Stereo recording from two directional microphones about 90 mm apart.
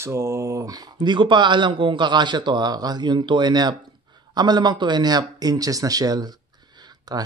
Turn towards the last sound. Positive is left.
turn(degrees=-50)  # may be behind; listen again after turning